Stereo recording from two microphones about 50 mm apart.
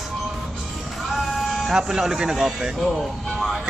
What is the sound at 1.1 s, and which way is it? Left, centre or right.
Music, centre.